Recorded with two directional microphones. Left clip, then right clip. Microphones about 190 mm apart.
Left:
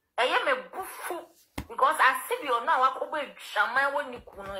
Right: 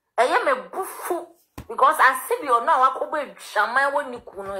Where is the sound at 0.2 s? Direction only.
40° right (ahead or behind).